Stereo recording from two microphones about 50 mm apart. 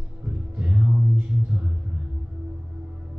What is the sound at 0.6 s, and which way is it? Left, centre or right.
Music, right.